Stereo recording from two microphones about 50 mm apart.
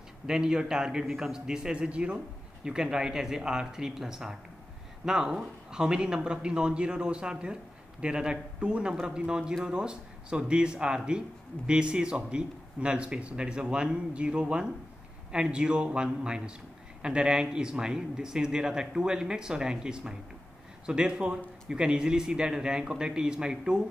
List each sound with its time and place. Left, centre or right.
0.3 s a man's voice: centre